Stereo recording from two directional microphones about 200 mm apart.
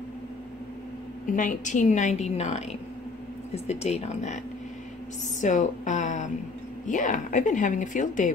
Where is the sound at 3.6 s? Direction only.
30° left (ahead or behind).